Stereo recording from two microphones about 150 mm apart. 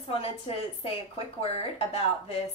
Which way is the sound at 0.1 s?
40° left (ahead or behind).